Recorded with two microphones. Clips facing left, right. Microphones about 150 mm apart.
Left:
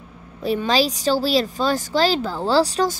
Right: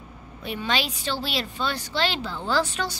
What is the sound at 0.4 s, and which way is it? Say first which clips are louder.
A woman's voice: left 8 dB; 35° left (ahead or behind).